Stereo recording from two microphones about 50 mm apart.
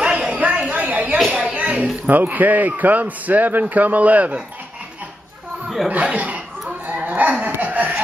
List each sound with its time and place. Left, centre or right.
0.0 s a sound: right
1.1 s a sound: centre
1.5 s a man's voice: right
5.9 s speech: right
6.9 s dog: right
7.6 s chuckle: right